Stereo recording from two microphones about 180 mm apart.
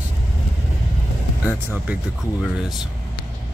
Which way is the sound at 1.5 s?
10° right (ahead or behind).